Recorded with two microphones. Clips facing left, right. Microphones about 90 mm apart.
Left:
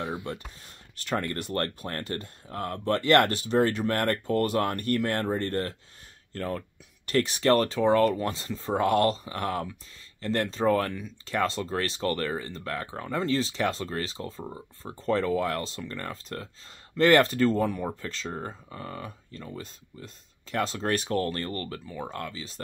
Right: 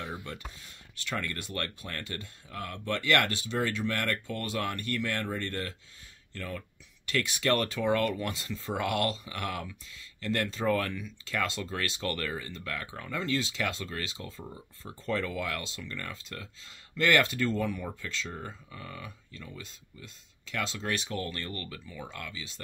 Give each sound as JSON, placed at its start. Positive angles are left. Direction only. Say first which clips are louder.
{"t": 0.9, "sound": "speech", "louder": "left 5 dB", "side_deg": 40}